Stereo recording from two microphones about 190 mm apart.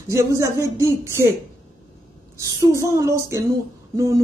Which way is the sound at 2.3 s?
15° right (ahead or behind).